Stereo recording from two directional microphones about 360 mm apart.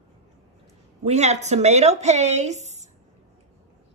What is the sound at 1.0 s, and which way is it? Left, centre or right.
Speech, centre.